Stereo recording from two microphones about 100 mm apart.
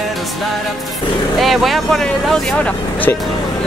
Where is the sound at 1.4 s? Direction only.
Centre (ahead or behind); by 3.2 s 15° left (ahead or behind).